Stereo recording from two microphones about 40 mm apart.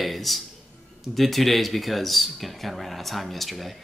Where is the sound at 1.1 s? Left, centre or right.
Centre.